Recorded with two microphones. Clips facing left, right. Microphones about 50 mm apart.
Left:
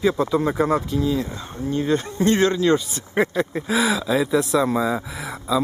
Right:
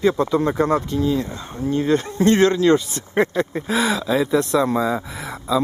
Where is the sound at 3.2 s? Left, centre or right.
Centre.